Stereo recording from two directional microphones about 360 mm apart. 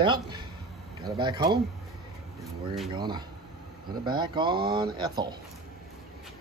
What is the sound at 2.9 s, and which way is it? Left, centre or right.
Speech, centre.